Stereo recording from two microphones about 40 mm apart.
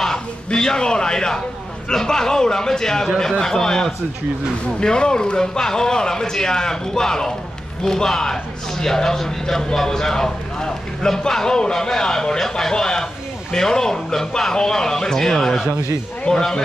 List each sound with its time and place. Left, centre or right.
0.0 s a man's voice: centre